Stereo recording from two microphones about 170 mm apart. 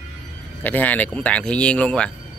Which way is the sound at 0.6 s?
10° left (ahead or behind).